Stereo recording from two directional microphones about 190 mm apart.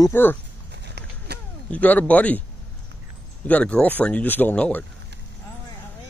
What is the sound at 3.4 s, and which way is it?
Speech, 5° left (ahead or behind).